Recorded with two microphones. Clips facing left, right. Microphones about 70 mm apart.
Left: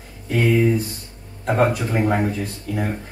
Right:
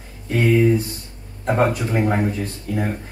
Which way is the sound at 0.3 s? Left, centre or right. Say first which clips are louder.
Right 1 dB; centre.